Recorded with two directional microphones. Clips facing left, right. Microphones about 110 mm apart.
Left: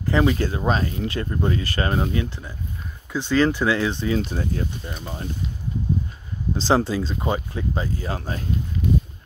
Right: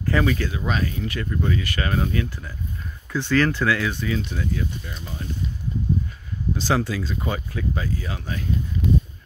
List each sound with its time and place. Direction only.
0.0 s speech: 25° left (ahead or behind)
6.5 s speech: 30° left (ahead or behind)